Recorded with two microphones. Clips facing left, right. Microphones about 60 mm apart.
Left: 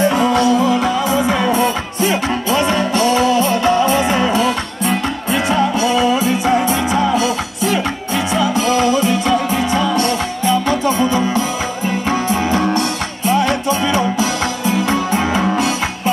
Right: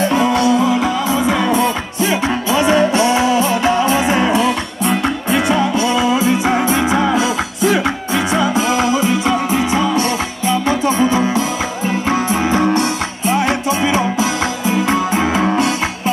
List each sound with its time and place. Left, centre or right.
0.2 s music: centre
1.2 s music: centre
2.2 s music: centre
5.8 s music: right
8.4 s music: right
11.1 s music: right